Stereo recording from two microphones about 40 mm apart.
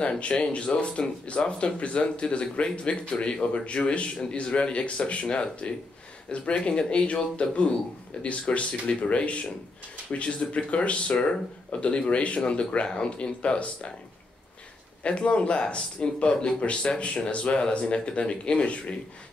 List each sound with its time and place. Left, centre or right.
0.0 s speech: left
15.0 s speech: left